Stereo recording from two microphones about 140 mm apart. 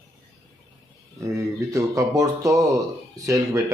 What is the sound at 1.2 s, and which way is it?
Speech, 25° right (ahead or behind).